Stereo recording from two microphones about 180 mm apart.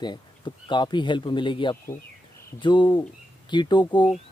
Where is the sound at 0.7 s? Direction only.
25° left (ahead or behind).